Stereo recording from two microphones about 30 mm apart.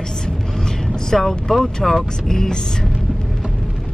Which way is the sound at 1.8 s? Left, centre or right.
Centre.